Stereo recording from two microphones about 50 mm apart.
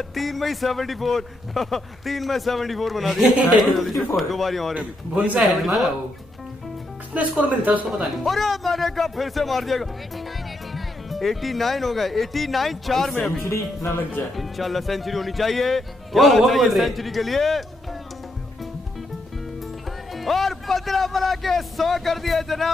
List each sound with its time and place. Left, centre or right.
0.1 s speech: centre
4.7 s a man's voice: right
5.4 s speech: centre
7.4 s speech: right
7.9 s speech: centre
14.3 s speech: centre
20.2 s speech: centre